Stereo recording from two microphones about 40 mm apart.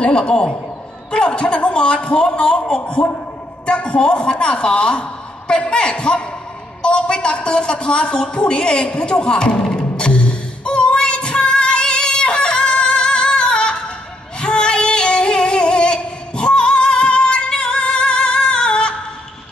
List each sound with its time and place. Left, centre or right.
0.0 s a man's voice: left
9.9 s music: left
14.4 s female singing: left